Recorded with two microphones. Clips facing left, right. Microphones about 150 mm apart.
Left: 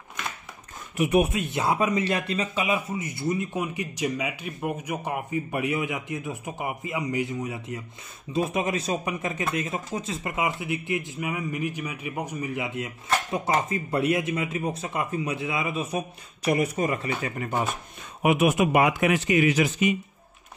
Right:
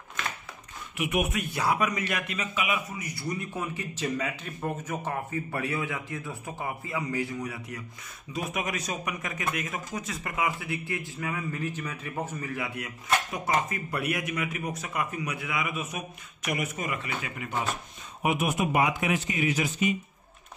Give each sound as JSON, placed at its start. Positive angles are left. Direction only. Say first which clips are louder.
{"t": 0.9, "sound": "a man's voice", "louder": "left 6 dB", "side_deg": 35}
{"t": 18.2, "sound": "a man's voice", "louder": "left 6 dB", "side_deg": 75}